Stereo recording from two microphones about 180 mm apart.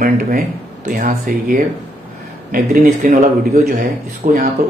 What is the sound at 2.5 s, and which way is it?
Speech, 45° right (ahead or behind).